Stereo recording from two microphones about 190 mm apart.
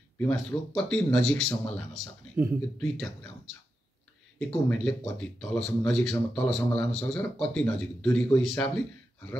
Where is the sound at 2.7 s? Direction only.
Centre (ahead or behind).